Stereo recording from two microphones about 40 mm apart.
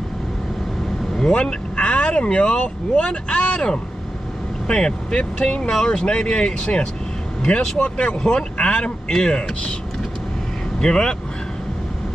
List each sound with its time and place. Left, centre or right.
1.1 s vehicle: centre
1.4 s speech: left
10.8 s speech: centre